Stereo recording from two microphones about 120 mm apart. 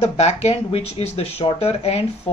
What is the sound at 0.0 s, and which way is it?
Speech, 65° left (ahead or behind).